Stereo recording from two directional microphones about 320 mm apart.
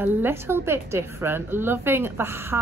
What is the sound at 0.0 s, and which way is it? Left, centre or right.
A woman's voice, centre.